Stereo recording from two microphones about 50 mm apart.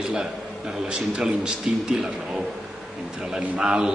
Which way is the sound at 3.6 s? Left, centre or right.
Centre.